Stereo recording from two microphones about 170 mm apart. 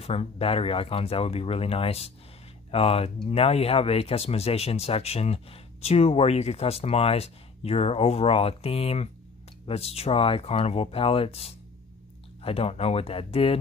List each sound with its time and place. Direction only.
0.0 s speech: 35° left (ahead or behind)